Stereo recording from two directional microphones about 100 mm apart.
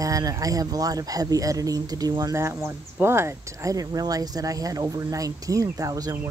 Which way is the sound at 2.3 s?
25° right (ahead or behind).